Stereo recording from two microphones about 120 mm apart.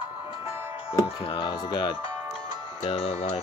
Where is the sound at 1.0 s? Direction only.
40° left (ahead or behind).